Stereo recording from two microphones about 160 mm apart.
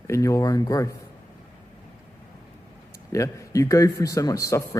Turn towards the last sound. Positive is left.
turn(degrees=20)  # may be behind; listen again after turning